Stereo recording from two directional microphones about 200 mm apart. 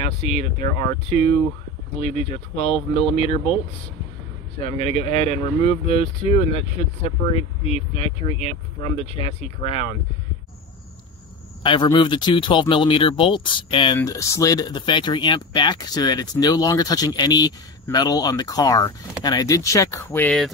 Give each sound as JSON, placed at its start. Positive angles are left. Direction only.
{"t": 0.0, "sound": "speech", "side_deg": 30}
{"t": 4.6, "sound": "speech", "side_deg": 30}
{"t": 11.6, "sound": "speech", "side_deg": 25}